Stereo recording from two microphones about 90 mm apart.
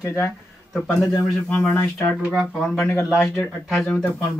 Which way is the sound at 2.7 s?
25° left (ahead or behind).